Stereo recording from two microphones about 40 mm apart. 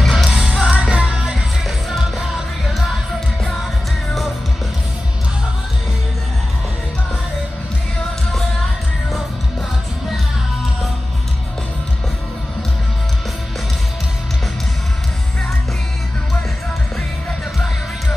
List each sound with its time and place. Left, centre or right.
0.0 s music: centre
0.4 s music: right